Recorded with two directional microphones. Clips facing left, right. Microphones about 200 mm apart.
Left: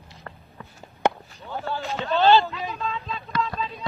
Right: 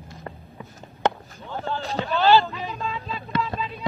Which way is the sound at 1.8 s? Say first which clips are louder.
Right 2 dB; 35° right (ahead or behind).